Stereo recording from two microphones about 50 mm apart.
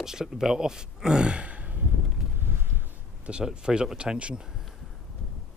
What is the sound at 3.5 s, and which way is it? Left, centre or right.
Speech, centre.